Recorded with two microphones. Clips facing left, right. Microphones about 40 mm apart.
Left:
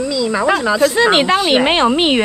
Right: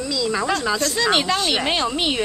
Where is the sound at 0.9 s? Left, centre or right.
Left.